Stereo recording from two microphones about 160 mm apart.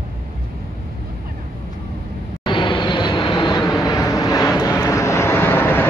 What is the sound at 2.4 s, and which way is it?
Vehicle, 30° left (ahead or behind).